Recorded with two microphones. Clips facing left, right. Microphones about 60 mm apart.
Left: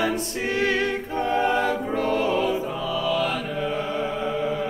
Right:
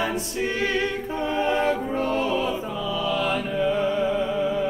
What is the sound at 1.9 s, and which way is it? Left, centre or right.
Music, left.